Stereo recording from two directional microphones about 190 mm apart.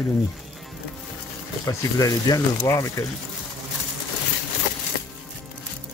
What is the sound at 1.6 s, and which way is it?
Speech, 20° left (ahead or behind).